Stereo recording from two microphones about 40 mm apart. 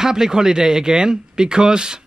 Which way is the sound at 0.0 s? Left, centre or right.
Centre.